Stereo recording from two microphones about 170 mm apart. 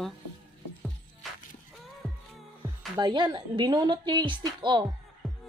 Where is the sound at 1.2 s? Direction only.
Centre (ahead or behind).